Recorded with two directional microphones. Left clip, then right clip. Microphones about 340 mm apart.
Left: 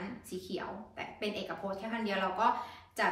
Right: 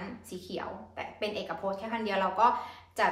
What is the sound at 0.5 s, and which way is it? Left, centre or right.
A woman's voice, centre.